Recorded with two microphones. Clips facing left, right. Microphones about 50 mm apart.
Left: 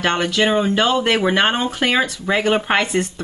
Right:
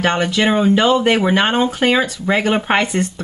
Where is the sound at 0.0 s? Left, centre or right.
Centre.